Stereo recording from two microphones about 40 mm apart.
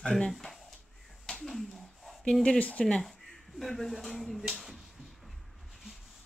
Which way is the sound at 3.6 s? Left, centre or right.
Centre.